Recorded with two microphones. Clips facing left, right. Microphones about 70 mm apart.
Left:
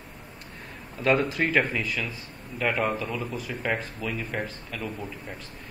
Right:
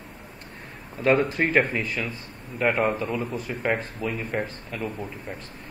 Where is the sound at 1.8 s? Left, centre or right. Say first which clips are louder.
Right 1 dB; right.